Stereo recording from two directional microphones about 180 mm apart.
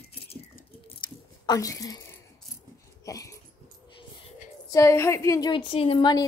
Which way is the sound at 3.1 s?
20° left (ahead or behind).